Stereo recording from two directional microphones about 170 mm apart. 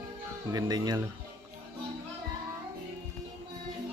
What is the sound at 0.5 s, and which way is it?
Speech, 20° right (ahead or behind).